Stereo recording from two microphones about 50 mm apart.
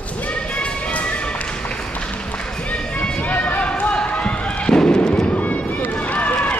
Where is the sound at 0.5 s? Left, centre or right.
Left.